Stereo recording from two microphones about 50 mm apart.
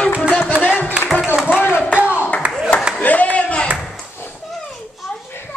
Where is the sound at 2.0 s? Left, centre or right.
Right.